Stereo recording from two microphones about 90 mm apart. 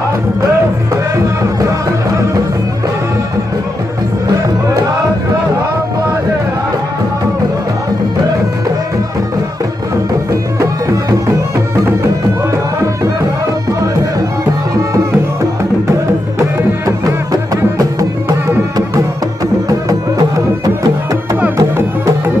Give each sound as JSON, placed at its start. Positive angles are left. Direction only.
{"t": 1.1, "sound": "music", "side_deg": -40}
{"t": 10.6, "sound": "music", "side_deg": -35}
{"t": 17.0, "sound": "music", "side_deg": -40}
{"t": 19.7, "sound": "music", "side_deg": -40}